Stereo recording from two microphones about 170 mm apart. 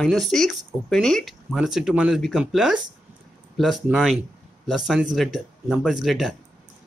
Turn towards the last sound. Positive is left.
turn(degrees=0)  # may be behind; listen again after turning